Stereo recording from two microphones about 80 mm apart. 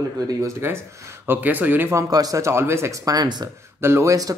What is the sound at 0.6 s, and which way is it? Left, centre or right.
Speech, right.